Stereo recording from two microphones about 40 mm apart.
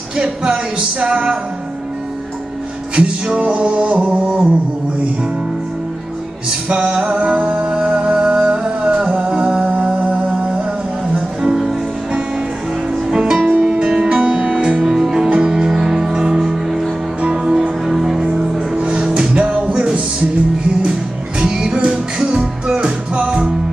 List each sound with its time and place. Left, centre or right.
0.2 s music: centre
3.4 s music: right
6.7 s music: right
11.1 s music: centre
14.8 s music: centre
15.2 s music: right
15.5 s music: centre
19.3 s music: right
21.4 s music: right